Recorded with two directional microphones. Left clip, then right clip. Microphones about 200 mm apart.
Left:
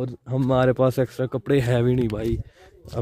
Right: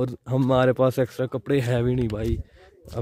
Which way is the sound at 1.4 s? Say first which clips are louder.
Left 3 dB; 10° left (ahead or behind).